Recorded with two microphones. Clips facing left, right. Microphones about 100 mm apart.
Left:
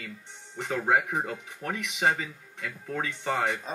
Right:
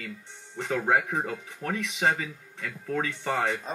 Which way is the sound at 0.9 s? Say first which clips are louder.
Left 1 dB; 15° left (ahead or behind).